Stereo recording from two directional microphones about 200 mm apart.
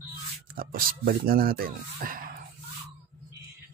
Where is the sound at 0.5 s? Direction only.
45° right (ahead or behind).